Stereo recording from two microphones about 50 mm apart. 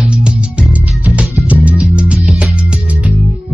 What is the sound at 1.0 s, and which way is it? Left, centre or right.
Music, right.